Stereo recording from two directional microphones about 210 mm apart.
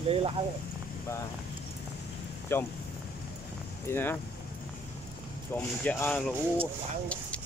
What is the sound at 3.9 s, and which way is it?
Speech, 10° left (ahead or behind).